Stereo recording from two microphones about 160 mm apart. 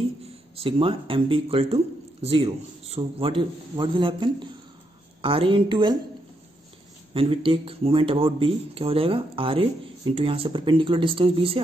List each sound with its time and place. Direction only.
0.6 s speech: 35° right (ahead or behind)
7.2 s speech: 35° right (ahead or behind)